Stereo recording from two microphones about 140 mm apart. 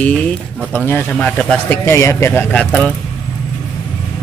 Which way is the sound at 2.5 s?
10° left (ahead or behind).